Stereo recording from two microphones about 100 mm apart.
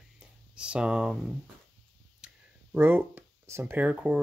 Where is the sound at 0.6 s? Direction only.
10° right (ahead or behind).